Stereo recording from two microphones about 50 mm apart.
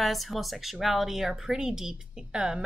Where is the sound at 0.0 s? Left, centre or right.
Centre.